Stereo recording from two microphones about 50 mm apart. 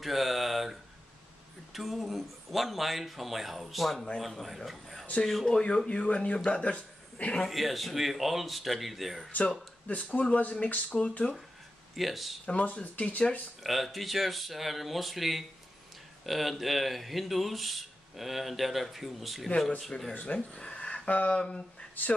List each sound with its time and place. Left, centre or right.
0.0 s a sound: centre
1.7 s speech: centre
4.6 s a sound: centre
5.2 s speech: centre
5.9 s speech: left
7.4 s speech: centre
9.3 s speech: left
11.9 s speech: centre
12.4 s speech: left
13.6 s speech: centre
20.2 s speech: left
20.5 s a sound: left
21.1 s speech: left
21.5 s speech: centre